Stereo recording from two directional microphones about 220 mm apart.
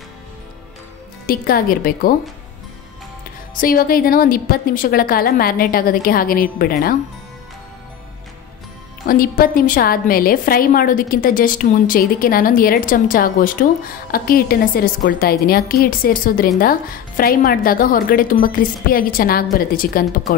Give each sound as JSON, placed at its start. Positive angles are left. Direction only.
{"t": 1.2, "sound": "a woman's voice", "side_deg": 40}
{"t": 3.5, "sound": "a woman's voice", "side_deg": 40}
{"t": 9.0, "sound": "a woman's voice", "side_deg": 40}